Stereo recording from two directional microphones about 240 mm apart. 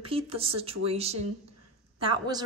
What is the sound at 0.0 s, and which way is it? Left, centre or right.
A woman's voice, right.